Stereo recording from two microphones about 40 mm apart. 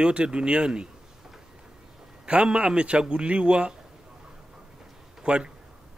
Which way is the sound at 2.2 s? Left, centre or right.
Right.